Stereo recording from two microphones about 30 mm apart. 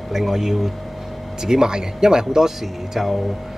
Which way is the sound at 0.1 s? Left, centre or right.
Centre.